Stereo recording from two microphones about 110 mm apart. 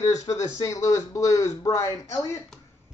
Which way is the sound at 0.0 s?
30° left (ahead or behind).